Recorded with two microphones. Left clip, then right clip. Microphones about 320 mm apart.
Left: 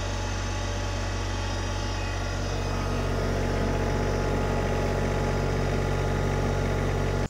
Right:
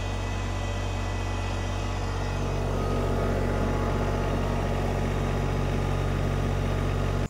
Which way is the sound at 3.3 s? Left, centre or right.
Centre.